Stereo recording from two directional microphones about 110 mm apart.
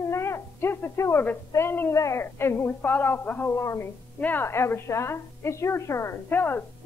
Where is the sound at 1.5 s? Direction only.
20° left (ahead or behind).